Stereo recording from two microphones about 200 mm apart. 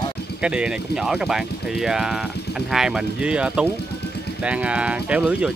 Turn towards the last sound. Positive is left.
turn(degrees=-5)  # may be behind; listen again after turning